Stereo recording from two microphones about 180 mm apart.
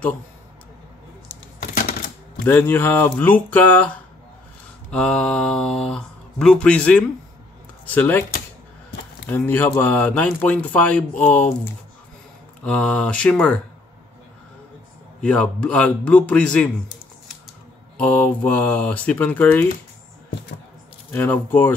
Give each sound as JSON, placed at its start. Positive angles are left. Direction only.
{"t": 1.6, "sound": "typewriter", "side_deg": 55}
{"t": 2.4, "sound": "speech", "side_deg": 10}
{"t": 12.6, "sound": "speech", "side_deg": 5}
{"t": 15.2, "sound": "speech", "side_deg": 5}
{"t": 17.9, "sound": "speech", "side_deg": 5}
{"t": 21.1, "sound": "speech", "side_deg": 10}